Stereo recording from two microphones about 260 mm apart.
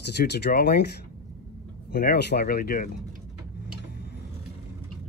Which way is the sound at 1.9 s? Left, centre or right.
Left.